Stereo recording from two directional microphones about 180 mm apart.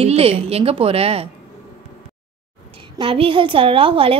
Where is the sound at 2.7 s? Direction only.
30° right (ahead or behind).